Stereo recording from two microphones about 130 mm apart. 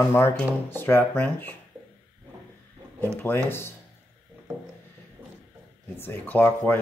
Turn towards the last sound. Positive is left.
turn(degrees=15)  # may be behind; listen again after turning